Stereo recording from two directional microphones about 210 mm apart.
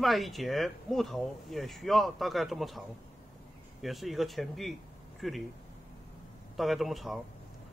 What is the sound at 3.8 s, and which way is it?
Speech, centre (ahead or behind).